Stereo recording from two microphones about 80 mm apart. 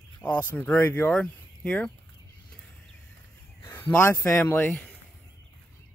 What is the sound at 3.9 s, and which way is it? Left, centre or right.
Speech, left.